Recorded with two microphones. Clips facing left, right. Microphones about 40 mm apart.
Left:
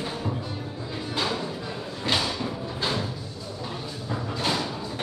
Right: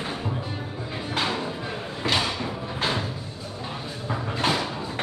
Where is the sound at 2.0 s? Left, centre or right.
Right.